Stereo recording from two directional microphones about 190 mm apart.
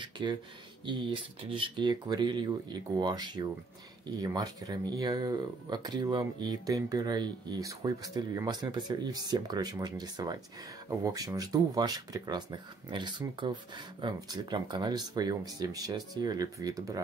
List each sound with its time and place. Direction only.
0.0 s speech: 25° right (ahead or behind)